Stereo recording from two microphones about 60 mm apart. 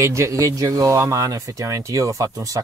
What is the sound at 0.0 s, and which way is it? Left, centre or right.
Speech, right.